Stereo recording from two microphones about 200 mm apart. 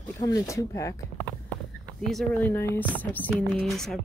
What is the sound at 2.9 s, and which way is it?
Speech, 10° left (ahead or behind).